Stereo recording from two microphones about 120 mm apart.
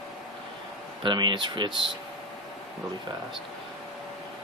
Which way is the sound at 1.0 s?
40° right (ahead or behind).